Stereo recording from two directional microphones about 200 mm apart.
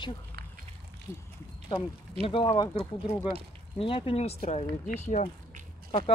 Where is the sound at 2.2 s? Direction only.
25° left (ahead or behind).